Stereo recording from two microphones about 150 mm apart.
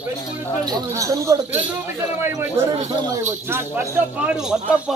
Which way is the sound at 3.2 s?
15° right (ahead or behind).